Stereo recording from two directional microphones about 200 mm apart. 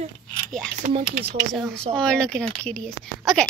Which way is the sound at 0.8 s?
40° right (ahead or behind).